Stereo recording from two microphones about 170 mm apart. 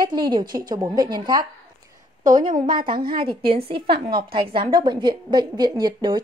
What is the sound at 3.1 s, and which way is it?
Speech, 30° right (ahead or behind).